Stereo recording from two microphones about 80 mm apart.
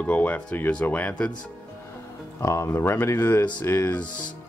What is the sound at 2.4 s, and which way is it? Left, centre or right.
Speech, left.